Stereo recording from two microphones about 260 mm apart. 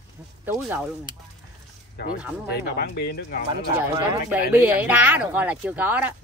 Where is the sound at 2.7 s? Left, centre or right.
Left.